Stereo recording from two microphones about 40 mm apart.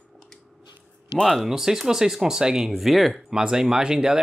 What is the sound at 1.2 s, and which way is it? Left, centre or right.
Speech, centre.